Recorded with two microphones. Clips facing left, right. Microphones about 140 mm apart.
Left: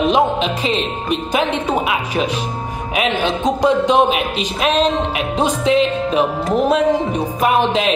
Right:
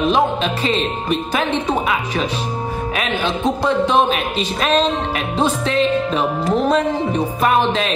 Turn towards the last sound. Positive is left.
turn(degrees=15)  # may be behind; listen again after turning